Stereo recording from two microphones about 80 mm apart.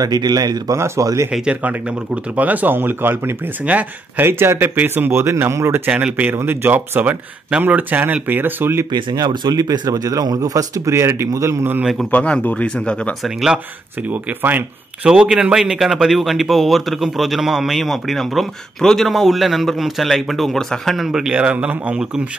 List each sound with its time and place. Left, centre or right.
0.0 s speech: right
0.7 s speech: right
1.3 s speech: centre; by 5.8 s right
5.9 s speech: centre
8.9 s speech: right
11.8 s speech: centre
12.1 s speech: centre
13.2 s speech: centre
14.0 s speech: right
15.0 s speech: centre